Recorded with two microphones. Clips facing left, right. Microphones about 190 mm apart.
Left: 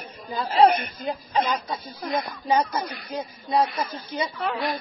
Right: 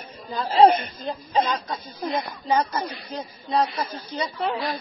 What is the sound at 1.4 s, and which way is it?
Speech, centre (ahead or behind).